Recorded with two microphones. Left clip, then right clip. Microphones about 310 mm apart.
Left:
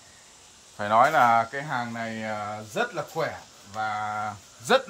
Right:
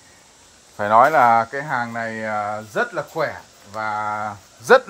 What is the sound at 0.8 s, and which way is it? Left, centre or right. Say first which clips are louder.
Speech: right 6 dB; right.